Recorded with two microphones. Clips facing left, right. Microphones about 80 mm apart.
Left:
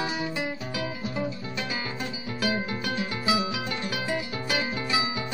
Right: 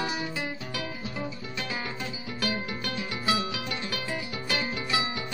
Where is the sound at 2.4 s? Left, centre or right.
Centre.